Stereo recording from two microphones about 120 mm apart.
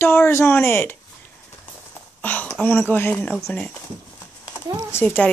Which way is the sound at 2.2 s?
15° left (ahead or behind).